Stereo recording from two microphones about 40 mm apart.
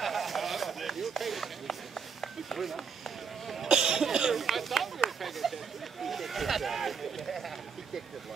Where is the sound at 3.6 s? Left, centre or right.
Centre.